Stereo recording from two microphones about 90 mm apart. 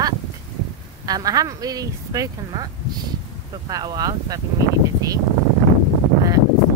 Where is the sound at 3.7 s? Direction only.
45° right (ahead or behind).